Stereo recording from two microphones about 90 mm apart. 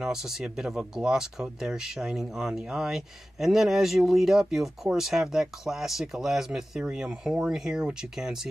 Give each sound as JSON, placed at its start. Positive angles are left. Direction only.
{"t": 0.0, "sound": "speech", "side_deg": -5}